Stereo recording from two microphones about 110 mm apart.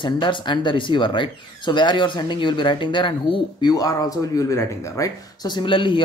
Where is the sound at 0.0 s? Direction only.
45° left (ahead or behind).